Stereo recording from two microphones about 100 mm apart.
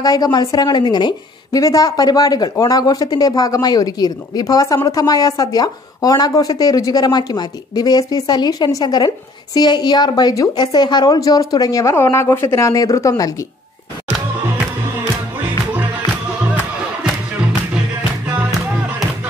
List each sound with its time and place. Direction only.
0.0 s a woman's voice: 40° left (ahead or behind)
1.6 s a woman's voice: 35° left (ahead or behind)
11.8 s a woman's voice: 25° left (ahead or behind)